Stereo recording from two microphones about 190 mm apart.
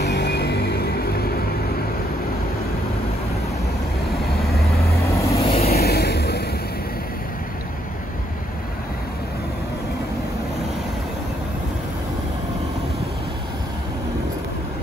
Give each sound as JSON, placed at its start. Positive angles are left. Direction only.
{"t": 0.0, "sound": "music", "side_deg": 60}
{"t": 4.4, "sound": "vehicle", "side_deg": 0}
{"t": 5.0, "sound": "vehicle", "side_deg": 15}
{"t": 5.5, "sound": "vehicle", "side_deg": 35}
{"t": 5.8, "sound": "vehicle", "side_deg": 55}